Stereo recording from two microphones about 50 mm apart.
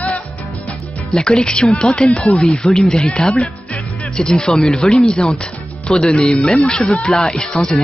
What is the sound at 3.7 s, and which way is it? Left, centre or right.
Music, left.